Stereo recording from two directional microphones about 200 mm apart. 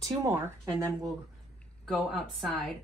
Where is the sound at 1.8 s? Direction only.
Centre (ahead or behind).